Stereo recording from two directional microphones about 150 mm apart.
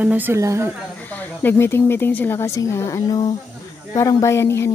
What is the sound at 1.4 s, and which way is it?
Speech, 15° left (ahead or behind).